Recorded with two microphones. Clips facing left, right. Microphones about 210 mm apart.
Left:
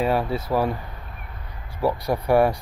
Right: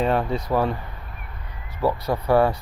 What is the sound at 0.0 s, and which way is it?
Speech, 5° left (ahead or behind).